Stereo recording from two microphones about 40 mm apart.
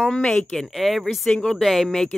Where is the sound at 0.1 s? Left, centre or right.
Left.